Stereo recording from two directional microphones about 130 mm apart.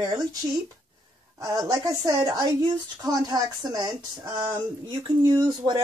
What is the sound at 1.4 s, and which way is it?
Speech, 25° right (ahead or behind).